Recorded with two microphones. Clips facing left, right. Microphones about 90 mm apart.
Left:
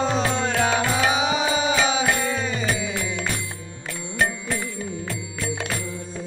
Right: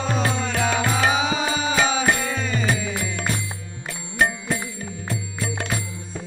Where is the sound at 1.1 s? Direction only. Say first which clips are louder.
Left 1 dB; 20° left (ahead or behind).